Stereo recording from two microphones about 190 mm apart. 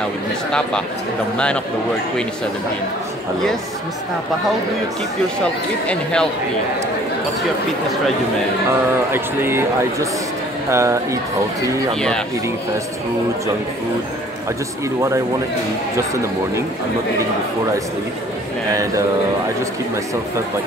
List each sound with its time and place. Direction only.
0.5 s speech: 5° left (ahead or behind)
5.4 s speech: 5° left (ahead or behind)
9.1 s speech: 10° right (ahead or behind)
18.7 s speech: 15° right (ahead or behind)